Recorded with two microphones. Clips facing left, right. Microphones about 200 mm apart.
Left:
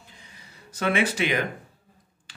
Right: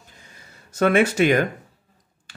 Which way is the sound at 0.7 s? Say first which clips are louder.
Right 7 dB; 45° right (ahead or behind).